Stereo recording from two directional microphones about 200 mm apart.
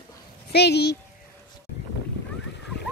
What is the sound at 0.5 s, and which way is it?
Speech, 55° left (ahead or behind).